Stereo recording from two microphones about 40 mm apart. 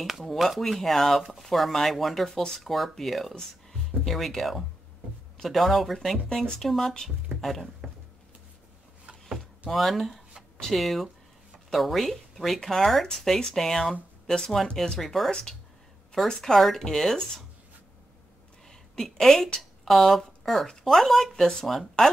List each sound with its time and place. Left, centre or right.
0.0 s speech: centre
9.7 s speech: centre
14.2 s speech: centre
15.0 s speech: centre
19.0 s speech: centre